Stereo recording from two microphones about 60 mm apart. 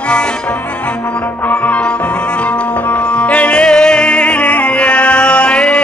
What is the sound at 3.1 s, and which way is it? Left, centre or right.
Music, left.